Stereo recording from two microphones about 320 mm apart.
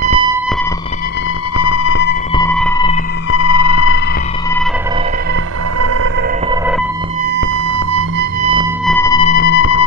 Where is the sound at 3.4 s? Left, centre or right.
Left.